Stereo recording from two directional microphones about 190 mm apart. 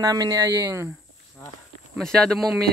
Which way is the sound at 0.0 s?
20° right (ahead or behind).